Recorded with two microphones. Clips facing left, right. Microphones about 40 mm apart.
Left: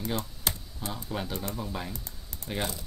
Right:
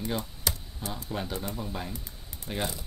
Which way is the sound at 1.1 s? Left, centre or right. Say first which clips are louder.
Even; centre.